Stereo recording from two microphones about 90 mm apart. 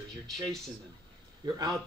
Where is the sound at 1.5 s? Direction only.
45° right (ahead or behind).